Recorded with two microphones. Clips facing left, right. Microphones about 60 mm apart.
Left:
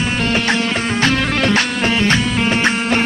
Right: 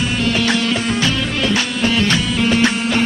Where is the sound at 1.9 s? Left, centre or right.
Left.